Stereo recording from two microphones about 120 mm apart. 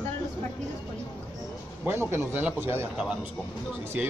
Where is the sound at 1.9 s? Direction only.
20° right (ahead or behind).